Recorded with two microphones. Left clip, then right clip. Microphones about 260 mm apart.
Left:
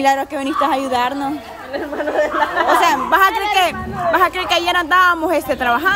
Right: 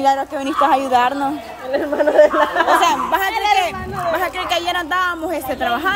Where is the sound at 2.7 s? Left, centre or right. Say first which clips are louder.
Left 2 dB; centre.